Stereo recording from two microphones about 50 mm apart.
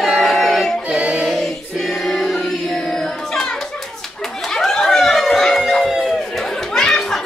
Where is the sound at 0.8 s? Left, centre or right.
Right.